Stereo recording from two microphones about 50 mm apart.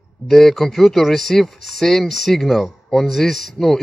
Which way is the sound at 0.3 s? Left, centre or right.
Centre.